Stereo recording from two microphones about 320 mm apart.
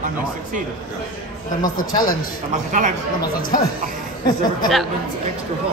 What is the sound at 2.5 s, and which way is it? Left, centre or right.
Speech, right.